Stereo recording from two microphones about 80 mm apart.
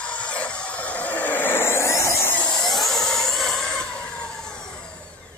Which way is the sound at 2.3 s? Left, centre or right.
Left.